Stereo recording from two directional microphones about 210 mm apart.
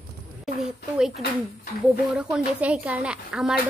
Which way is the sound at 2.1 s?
5° right (ahead or behind).